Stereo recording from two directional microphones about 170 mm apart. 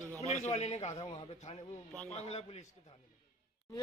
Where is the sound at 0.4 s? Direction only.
40° left (ahead or behind).